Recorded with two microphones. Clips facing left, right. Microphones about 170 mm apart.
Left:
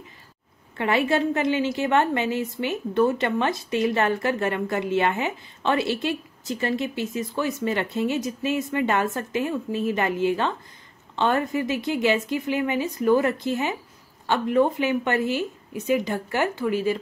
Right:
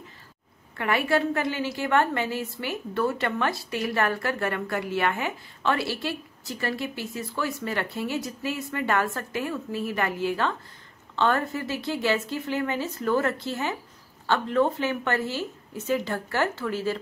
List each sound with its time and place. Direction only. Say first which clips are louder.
0.7 s a woman's voice: left 2 dB; 25° left (ahead or behind)